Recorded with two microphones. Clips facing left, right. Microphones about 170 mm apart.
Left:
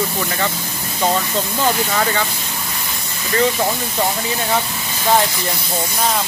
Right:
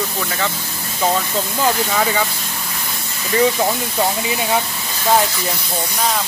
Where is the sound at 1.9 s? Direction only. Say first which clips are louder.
Right 1 dB; 5° right (ahead or behind).